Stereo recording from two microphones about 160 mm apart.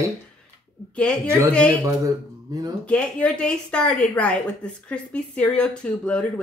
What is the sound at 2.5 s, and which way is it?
Speech, 25° right (ahead or behind).